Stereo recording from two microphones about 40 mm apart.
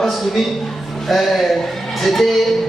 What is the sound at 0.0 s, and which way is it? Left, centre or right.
A man's voice, centre.